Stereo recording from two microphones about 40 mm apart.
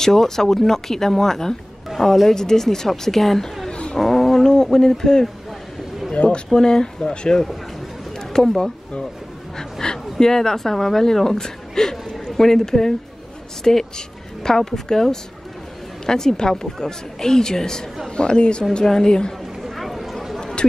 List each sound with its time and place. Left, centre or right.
0.0 s a woman's voice: centre
3.7 s roaring cats: left
4.0 s a woman's voice: centre
6.1 s speech: left
6.5 s a woman's voice: centre
8.2 s a sound: centre
9.6 s dog: centre
10.1 s a woman's voice: centre
19.6 s a sound: centre
20.3 s a sound: centre